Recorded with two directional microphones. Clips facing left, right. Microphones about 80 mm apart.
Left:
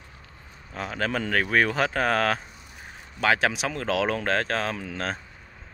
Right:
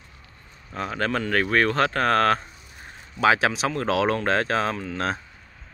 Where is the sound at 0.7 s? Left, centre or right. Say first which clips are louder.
Right 2 dB; centre.